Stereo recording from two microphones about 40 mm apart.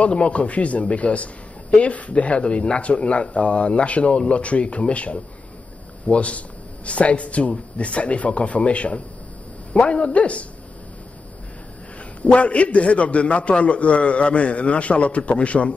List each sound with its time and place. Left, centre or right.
0.0 s a man's voice: left
12.2 s a man's voice: left